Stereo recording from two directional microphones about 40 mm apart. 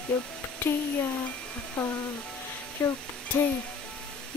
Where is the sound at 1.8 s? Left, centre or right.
Left.